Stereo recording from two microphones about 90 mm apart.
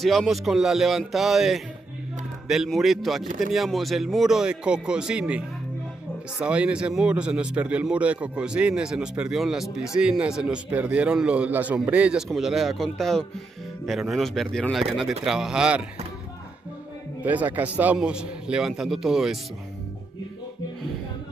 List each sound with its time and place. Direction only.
0.0 s speech: centre (ahead or behind)
6.4 s a man's voice: 10° right (ahead or behind)
12.3 s speech: centre (ahead or behind)
17.2 s a man's voice: 20° right (ahead or behind)